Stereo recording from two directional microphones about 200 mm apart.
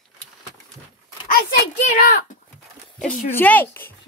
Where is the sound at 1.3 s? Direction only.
40° left (ahead or behind).